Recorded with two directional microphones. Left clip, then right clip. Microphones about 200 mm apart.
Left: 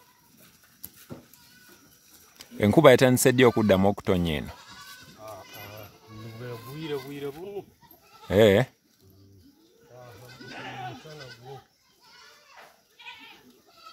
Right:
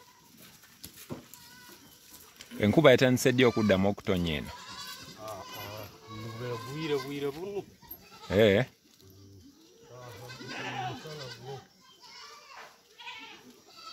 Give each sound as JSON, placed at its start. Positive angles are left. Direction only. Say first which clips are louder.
{"t": 2.3, "sound": "speech", "louder": "left 4 dB", "side_deg": 30}
{"t": 5.1, "sound": "goat", "louder": "even", "side_deg": 5}
{"t": 6.3, "sound": "music", "louder": "right 2 dB", "side_deg": 10}
{"t": 7.1, "sound": "a sound", "louder": "right 1 dB", "side_deg": 5}
{"t": 8.3, "sound": "speech", "louder": "left 5 dB", "side_deg": 30}
{"t": 10.2, "sound": "goat", "louder": "right 2 dB", "side_deg": 0}